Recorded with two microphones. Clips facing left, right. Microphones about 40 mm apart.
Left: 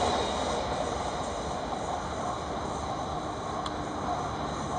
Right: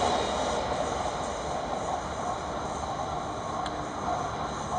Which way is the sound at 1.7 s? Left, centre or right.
Left.